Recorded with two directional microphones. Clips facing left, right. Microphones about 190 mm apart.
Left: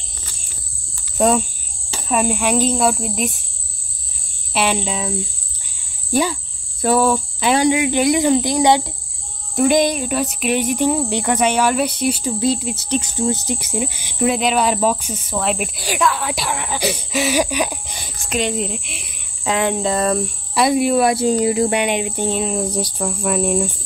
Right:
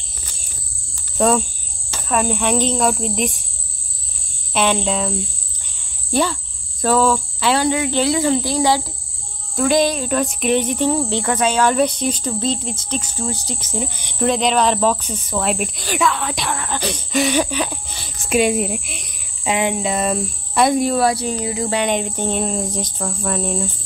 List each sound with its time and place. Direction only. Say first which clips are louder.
1.1 s cricket: even; 10° left (ahead or behind)
1.9 s speech: left 1 dB; 10° left (ahead or behind)
4.6 s cricket: right 2 dB; 5° left (ahead or behind)
6.8 s speech: even; 15° left (ahead or behind)
16.0 s cricket: even; 5° left (ahead or behind)
16.5 s speech: left 2 dB; 10° left (ahead or behind)
18.3 s speech: right 4 dB; 10° right (ahead or behind)
19.4 s speech: left 1 dB; 15° right (ahead or behind)
20.5 s speech: left 1 dB; 5° left (ahead or behind)
21.5 s speech: left 6 dB; 25° left (ahead or behind)
21.7 s speech: even; 10° left (ahead or behind)